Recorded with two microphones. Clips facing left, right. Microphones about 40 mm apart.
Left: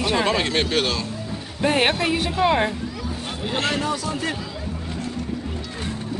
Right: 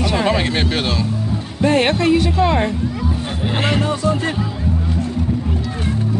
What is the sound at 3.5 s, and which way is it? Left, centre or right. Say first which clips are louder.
Speech: right 3 dB; right.